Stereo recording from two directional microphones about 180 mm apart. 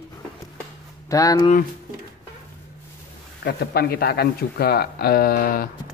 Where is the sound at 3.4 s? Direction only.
60° left (ahead or behind).